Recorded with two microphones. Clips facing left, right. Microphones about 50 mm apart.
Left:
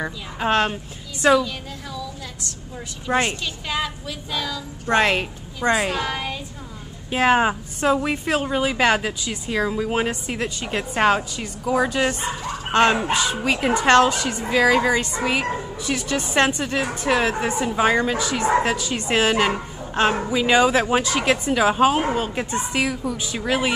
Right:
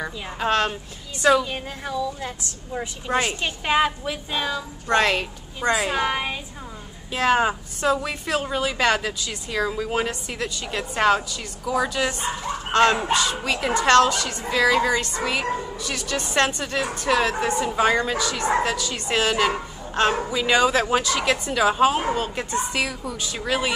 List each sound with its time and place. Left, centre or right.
0.0 s a woman's voice: centre
1.4 s a woman's voice: right
3.3 s a woman's voice: right
4.8 s a woman's voice: left
5.9 s a woman's voice: right
7.1 s a woman's voice: left